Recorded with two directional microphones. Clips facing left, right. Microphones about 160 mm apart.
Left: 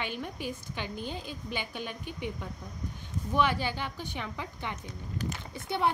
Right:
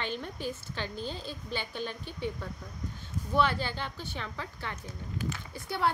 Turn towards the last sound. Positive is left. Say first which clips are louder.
# left 2 dB
turn(degrees=20)  # may be behind; listen again after turning